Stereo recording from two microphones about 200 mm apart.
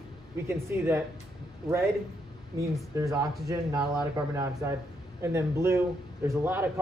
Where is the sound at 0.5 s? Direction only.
10° right (ahead or behind).